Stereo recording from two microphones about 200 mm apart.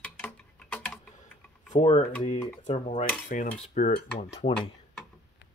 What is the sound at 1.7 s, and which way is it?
Speech, 30° left (ahead or behind).